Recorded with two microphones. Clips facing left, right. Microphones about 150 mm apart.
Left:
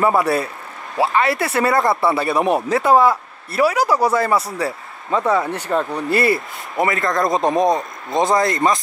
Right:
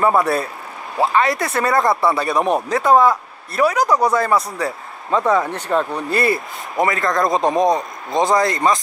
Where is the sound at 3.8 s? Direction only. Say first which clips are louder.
Right 1 dB; 5° left (ahead or behind).